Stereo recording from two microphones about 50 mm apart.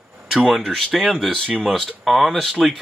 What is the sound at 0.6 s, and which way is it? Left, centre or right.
Speech, centre.